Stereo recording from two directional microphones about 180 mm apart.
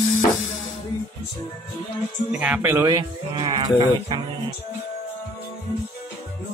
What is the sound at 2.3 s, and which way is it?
Speech, 5° right (ahead or behind).